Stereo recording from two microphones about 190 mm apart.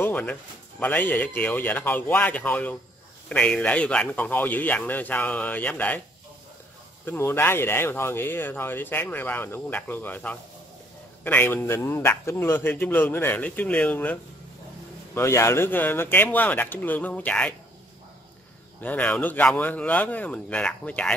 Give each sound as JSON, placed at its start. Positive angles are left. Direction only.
{"t": 0.0, "sound": "speech", "side_deg": 10}
{"t": 7.1, "sound": "speech", "side_deg": 10}
{"t": 15.1, "sound": "speech", "side_deg": 15}
{"t": 18.8, "sound": "speech", "side_deg": 5}